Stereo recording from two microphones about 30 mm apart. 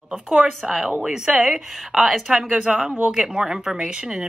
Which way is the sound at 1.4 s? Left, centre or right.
Centre.